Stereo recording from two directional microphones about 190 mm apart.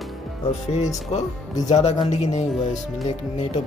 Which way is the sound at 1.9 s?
20° left (ahead or behind).